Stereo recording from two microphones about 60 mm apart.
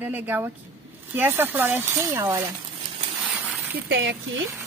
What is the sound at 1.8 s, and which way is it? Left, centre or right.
Speech, right.